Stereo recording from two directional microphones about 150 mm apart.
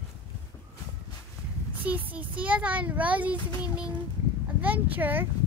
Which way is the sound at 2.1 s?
10° right (ahead or behind).